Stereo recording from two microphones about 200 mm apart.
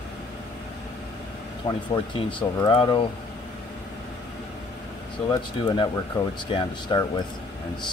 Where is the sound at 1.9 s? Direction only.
25° left (ahead or behind).